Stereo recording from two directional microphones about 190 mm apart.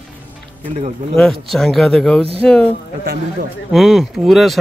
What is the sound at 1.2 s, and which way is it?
Speech, centre (ahead or behind).